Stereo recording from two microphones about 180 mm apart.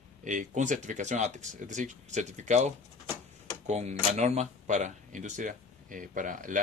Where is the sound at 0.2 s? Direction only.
45° right (ahead or behind).